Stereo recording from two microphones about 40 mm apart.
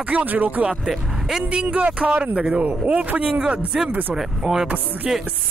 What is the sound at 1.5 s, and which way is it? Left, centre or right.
Speech, right.